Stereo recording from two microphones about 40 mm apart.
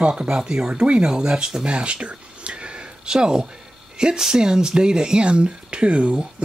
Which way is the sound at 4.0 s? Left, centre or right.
Centre.